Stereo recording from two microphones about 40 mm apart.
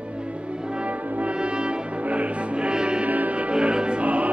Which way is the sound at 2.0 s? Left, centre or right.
Right.